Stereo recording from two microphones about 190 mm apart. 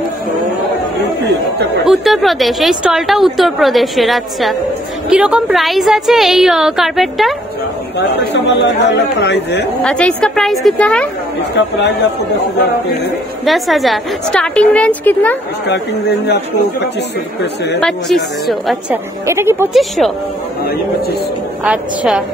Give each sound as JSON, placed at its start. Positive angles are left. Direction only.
{"t": 1.9, "sound": "a woman's voice", "side_deg": 0}
{"t": 8.5, "sound": "speech", "side_deg": 65}
{"t": 9.8, "sound": "a woman's voice", "side_deg": 5}
{"t": 13.5, "sound": "a woman's voice", "side_deg": 0}
{"t": 15.6, "sound": "speech", "side_deg": 60}
{"t": 17.7, "sound": "a woman's voice", "side_deg": 0}
{"t": 19.2, "sound": "speech", "side_deg": -15}
{"t": 19.7, "sound": "a woman's voice", "side_deg": 0}
{"t": 21.6, "sound": "a woman's voice", "side_deg": -5}